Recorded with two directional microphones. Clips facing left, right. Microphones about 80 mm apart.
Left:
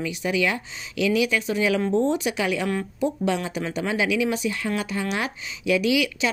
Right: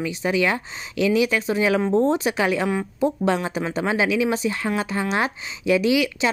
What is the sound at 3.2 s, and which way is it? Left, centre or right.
Speech, right.